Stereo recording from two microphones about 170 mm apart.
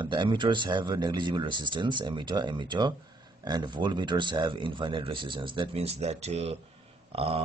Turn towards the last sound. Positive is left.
turn(degrees=-35)  # may be behind; listen again after turning